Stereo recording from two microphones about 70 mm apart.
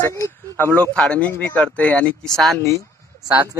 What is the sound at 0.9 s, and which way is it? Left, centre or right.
Speech, centre.